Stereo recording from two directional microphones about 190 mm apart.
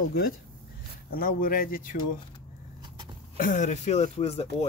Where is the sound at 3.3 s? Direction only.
45° left (ahead or behind).